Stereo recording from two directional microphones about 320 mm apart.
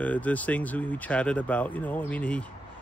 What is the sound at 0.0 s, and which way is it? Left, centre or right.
Speech, centre.